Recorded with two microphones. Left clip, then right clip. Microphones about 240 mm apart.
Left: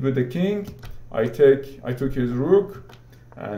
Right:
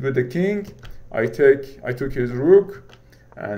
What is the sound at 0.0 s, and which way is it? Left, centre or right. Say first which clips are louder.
Speech: right 2 dB; right.